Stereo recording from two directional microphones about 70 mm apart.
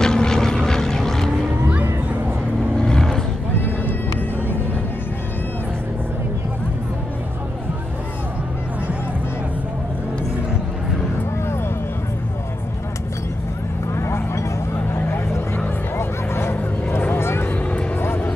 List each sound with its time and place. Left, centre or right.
0.0 s vehicle: centre
2.8 s roaring cats: centre
3.5 s vehicle: left
13.9 s vehicle: left
16.0 s a sound: left
17.0 s vehicle: left